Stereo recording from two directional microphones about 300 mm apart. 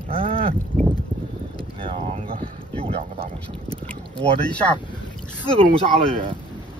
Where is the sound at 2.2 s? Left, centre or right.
Right.